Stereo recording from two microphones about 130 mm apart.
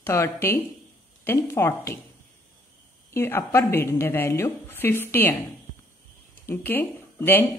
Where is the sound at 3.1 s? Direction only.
20° left (ahead or behind).